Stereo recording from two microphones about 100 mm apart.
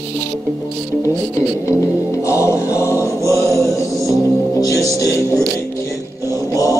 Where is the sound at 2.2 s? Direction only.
30° left (ahead or behind).